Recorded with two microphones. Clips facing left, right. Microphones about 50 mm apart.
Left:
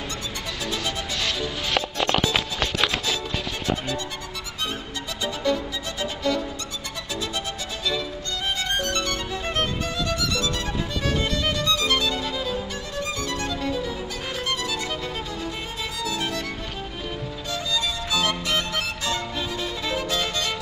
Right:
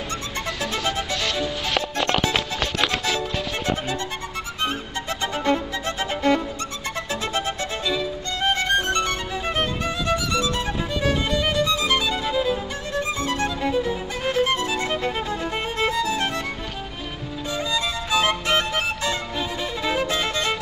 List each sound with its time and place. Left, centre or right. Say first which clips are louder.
1.2 s music: right 2 dB; centre
3.6 s music: even; right
5.2 s music: right 2 dB; right
7.8 s music: right 1 dB; centre
8.4 s music: right 6 dB; right
8.8 s music: right 4 dB; right
9.3 s music: right 2 dB; centre
13.0 s music: right 4 dB; right
15.8 s music: right 6 dB; right
17.5 s music: right 2 dB; right